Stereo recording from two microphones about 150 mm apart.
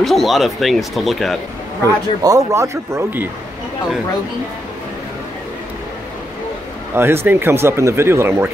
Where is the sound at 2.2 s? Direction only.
20° right (ahead or behind).